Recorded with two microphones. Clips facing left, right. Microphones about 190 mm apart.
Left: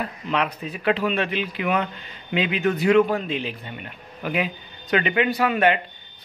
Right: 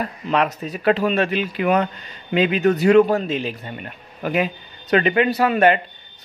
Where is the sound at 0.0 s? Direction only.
45° right (ahead or behind).